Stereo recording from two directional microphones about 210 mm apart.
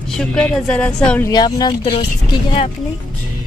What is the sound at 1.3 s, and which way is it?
Speech, 20° left (ahead or behind).